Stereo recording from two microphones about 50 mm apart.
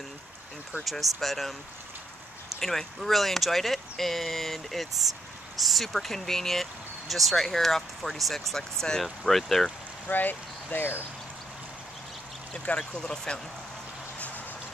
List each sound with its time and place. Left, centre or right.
0.7 s speech: centre
2.6 s speech: centre
10.0 s speech: left
12.5 s speech: centre